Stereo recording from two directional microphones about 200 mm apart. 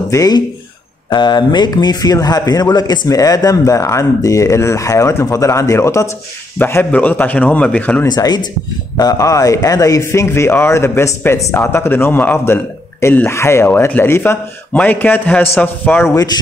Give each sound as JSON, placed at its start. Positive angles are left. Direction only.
{"t": 0.1, "sound": "a man's voice", "side_deg": 15}
{"t": 8.1, "sound": "a man's voice", "side_deg": 20}